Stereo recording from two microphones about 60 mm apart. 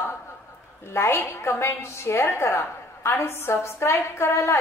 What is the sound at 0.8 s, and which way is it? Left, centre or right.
Speech, left.